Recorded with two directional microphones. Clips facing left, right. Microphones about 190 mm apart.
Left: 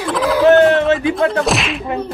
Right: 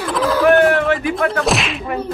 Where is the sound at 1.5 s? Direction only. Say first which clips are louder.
Left 1 dB; centre (ahead or behind).